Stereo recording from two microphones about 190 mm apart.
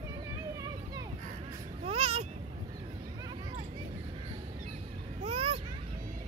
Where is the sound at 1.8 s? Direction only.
30° right (ahead or behind).